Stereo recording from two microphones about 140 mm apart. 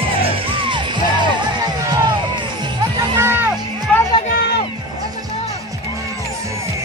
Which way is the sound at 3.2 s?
15° right (ahead or behind).